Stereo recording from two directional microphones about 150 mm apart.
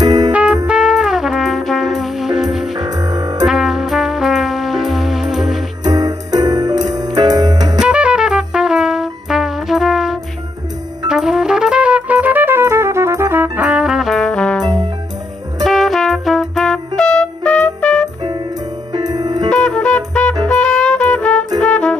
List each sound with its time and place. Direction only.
0.0 s music: 30° right (ahead or behind)
0.3 s music: 10° right (ahead or behind)
2.7 s music: 30° right (ahead or behind)
3.4 s music: centre (ahead or behind)
5.9 s music: 30° right (ahead or behind)
7.8 s brass instrument: 5° right (ahead or behind)
11.1 s music: 5° right (ahead or behind)
18.9 s music: 30° right (ahead or behind)
19.5 s music: 5° left (ahead or behind)